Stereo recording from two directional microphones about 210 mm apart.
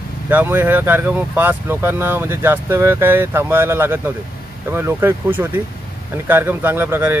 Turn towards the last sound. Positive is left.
turn(degrees=-10)  # may be behind; listen again after turning